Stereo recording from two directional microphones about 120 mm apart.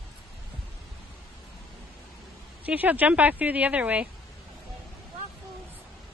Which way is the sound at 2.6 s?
15° right (ahead or behind).